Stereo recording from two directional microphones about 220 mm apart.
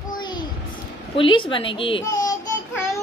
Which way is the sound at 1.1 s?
25° left (ahead or behind).